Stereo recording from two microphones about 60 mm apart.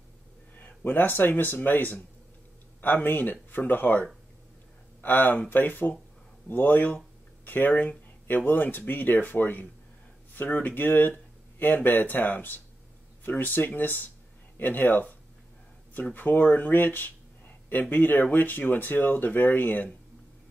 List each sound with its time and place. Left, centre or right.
0.6 s speech: left